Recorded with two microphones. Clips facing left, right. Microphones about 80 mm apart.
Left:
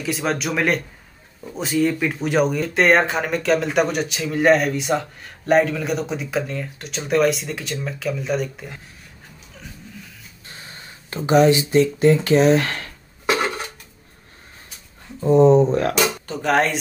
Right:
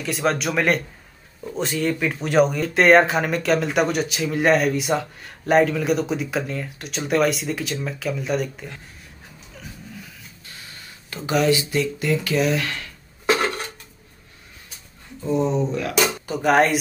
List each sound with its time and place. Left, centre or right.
0.0 s speech: centre
10.5 s speech: left
13.3 s dishes: centre
15.1 s speech: left
15.9 s speech: centre